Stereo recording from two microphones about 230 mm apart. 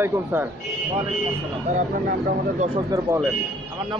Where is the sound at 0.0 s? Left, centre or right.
Centre.